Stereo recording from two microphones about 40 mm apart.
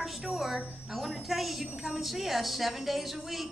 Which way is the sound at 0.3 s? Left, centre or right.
Centre.